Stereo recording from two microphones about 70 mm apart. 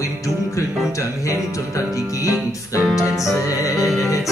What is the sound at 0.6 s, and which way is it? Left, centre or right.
Music, left.